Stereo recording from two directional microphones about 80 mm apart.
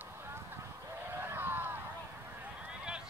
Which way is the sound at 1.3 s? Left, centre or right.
Right.